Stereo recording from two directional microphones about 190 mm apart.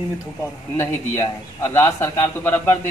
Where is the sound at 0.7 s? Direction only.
15° left (ahead or behind).